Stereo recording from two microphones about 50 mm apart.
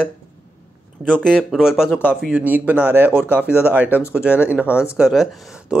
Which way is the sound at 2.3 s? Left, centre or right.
Right.